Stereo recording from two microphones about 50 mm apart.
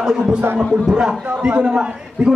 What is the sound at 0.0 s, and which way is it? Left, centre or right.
A man's voice, centre.